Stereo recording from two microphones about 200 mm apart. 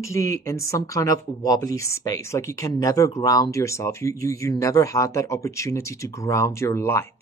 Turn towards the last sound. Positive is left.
turn(degrees=10)  # may be behind; listen again after turning